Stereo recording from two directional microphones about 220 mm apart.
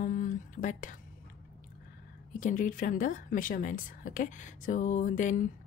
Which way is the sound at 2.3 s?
35° left (ahead or behind).